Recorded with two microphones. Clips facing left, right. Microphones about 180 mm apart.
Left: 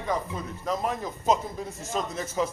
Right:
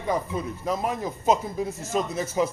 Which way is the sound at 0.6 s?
10° right (ahead or behind).